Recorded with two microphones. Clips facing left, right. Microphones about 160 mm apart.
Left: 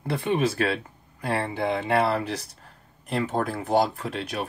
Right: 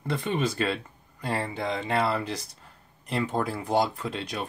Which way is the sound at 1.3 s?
65° left (ahead or behind).